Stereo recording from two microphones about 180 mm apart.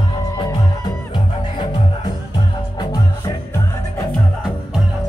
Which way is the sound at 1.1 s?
25° left (ahead or behind).